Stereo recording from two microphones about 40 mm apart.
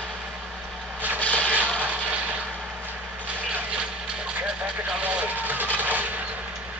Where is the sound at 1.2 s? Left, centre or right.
Left.